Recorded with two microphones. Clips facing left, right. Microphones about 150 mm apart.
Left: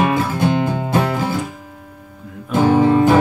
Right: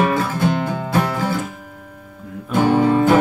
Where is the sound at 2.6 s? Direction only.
20° left (ahead or behind).